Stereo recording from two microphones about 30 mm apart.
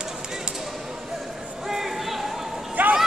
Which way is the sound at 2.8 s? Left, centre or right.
Right.